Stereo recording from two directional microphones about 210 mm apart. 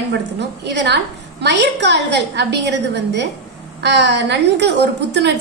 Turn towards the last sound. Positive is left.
turn(degrees=-55)  # may be behind; listen again after turning